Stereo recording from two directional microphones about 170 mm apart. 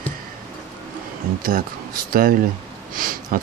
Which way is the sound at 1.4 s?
55° right (ahead or behind).